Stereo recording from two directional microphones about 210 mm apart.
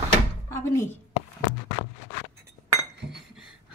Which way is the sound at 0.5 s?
15° left (ahead or behind).